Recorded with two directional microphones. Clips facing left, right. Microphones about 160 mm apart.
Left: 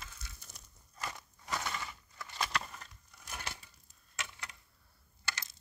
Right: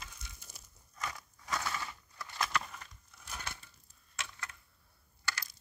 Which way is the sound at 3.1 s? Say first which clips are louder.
Even; 15° left (ahead or behind).